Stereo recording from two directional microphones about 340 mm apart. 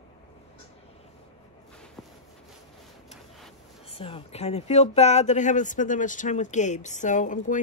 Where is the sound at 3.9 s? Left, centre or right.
Centre.